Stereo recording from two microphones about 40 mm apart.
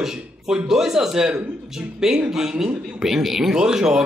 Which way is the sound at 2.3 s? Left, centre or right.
Centre.